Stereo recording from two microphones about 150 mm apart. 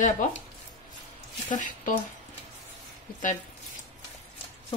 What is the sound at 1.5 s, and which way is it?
Speech, 60° left (ahead or behind).